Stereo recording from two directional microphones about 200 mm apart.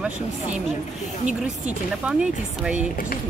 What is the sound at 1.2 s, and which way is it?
Speech, 35° right (ahead or behind).